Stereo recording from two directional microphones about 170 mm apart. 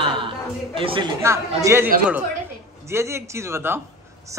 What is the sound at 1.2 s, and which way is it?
Speech, 15° right (ahead or behind).